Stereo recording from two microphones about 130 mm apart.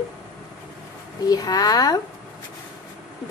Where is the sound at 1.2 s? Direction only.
30° left (ahead or behind).